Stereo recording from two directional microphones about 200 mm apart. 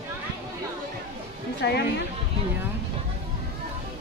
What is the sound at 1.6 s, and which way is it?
Speech, 60° left (ahead or behind).